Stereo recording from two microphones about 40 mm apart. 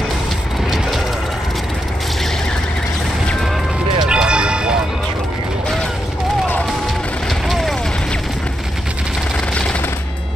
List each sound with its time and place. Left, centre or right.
4.1 s music: right
7.4 s vehicle: centre